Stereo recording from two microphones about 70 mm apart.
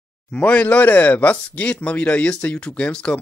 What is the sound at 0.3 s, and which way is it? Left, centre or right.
Speech, centre.